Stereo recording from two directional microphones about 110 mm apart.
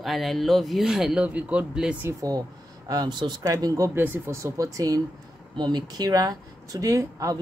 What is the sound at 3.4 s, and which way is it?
Speech, 30° right (ahead or behind).